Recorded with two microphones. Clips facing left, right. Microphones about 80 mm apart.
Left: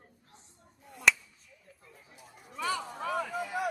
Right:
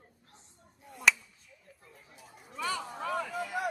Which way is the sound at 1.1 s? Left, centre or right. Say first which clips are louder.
Even; centre.